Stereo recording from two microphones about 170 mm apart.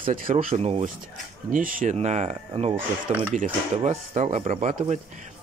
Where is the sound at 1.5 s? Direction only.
55° right (ahead or behind).